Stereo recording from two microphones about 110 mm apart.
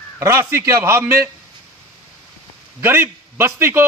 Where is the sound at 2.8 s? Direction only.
20° right (ahead or behind).